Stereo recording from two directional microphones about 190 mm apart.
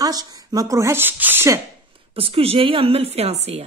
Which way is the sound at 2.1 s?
30° right (ahead or behind).